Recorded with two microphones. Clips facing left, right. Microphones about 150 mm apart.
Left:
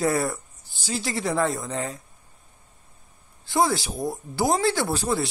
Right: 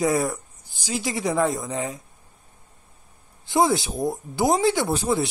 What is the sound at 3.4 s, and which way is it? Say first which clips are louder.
Speech: right 2 dB; 20° right (ahead or behind).